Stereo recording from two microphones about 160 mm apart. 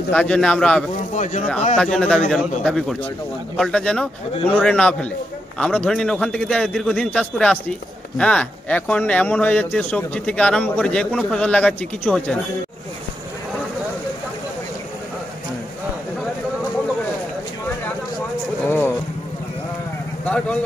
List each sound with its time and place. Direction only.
0.1 s a man's voice: 5° left (ahead or behind)
1.1 s speech: 50° left (ahead or behind)
1.8 s a man's voice: 5° left (ahead or behind)
18.7 s a sound: 15° left (ahead or behind)
20.2 s speech: 10° left (ahead or behind)